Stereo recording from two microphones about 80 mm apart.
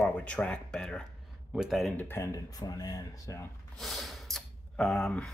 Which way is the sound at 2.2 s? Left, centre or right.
Left.